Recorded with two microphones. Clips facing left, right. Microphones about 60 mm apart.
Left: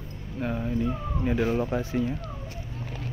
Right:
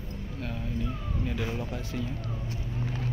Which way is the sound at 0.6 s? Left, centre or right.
Left.